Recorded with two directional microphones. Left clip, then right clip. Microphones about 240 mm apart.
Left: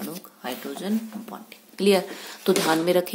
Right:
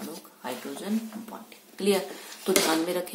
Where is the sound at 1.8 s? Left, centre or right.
Left.